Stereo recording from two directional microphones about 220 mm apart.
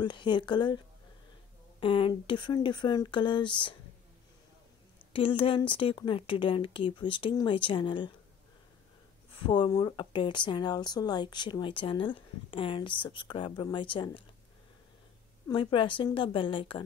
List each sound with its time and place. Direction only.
0.0 s a woman's voice: 20° left (ahead or behind)
5.1 s a woman's voice: 25° left (ahead or behind)
9.5 s a woman's voice: 20° left (ahead or behind)
15.4 s a woman's voice: 25° left (ahead or behind)